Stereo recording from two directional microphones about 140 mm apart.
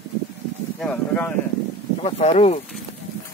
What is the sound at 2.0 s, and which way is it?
Speech, 45° left (ahead or behind).